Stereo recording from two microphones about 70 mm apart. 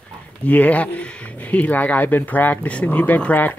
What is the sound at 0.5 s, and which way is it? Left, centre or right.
Speech, left.